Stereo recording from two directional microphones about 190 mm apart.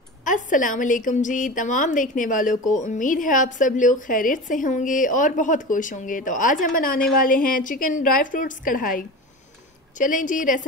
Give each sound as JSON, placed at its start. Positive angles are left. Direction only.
{"t": 0.2, "sound": "a woman's voice", "side_deg": 45}